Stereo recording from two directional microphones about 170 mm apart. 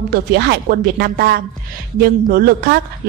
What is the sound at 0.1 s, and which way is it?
A woman's voice, 70° right (ahead or behind).